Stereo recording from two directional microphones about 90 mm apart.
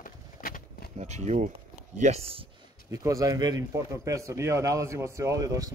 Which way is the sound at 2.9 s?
40° right (ahead or behind).